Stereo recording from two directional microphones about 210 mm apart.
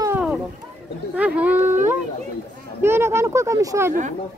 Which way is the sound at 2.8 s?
10° right (ahead or behind).